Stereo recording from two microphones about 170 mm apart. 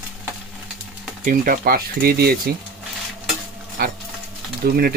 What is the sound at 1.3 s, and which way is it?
Speech, 60° right (ahead or behind).